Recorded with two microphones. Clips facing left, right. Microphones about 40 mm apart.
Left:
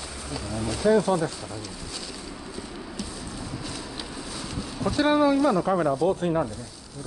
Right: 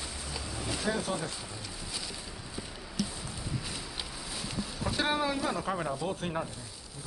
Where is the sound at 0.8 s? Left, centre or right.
Centre.